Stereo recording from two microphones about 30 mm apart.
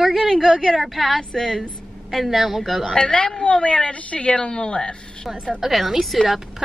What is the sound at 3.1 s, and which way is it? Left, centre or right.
A woman's voice, left.